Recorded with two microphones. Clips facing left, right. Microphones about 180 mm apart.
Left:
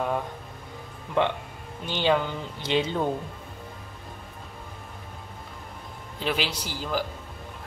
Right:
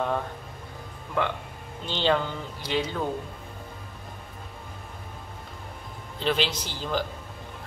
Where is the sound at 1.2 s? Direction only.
20° left (ahead or behind).